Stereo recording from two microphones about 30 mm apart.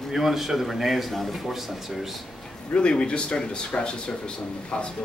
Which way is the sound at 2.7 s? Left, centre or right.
Left.